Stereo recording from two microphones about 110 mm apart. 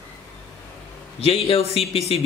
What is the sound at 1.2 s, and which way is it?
Speech, 60° left (ahead or behind).